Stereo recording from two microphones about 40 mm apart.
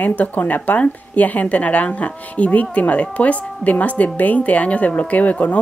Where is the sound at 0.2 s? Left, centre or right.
Left.